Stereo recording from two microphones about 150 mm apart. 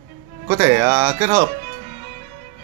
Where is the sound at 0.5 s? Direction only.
20° right (ahead or behind).